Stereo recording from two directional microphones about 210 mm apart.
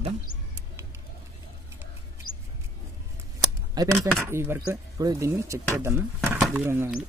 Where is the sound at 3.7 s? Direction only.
15° right (ahead or behind).